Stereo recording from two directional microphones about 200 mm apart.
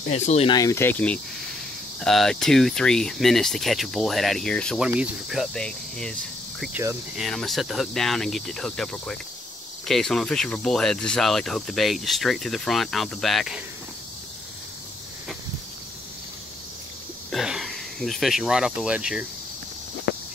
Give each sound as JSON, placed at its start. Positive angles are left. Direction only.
{"t": 0.1, "sound": "speech", "side_deg": 35}
{"t": 0.6, "sound": "speech", "side_deg": 15}
{"t": 7.2, "sound": "speech", "side_deg": 0}
{"t": 17.3, "sound": "speech", "side_deg": 0}